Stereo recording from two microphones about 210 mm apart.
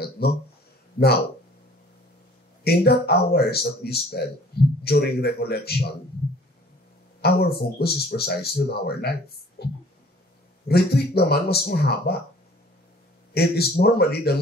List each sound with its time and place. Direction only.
0.2 s speech: 50° left (ahead or behind)
2.6 s speech: 50° left (ahead or behind)
7.2 s speech: 50° left (ahead or behind)
13.3 s speech: 50° left (ahead or behind)